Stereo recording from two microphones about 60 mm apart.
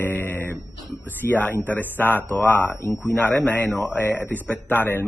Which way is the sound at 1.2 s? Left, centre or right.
Left.